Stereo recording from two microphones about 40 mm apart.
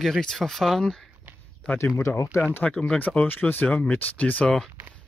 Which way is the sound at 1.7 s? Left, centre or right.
Left.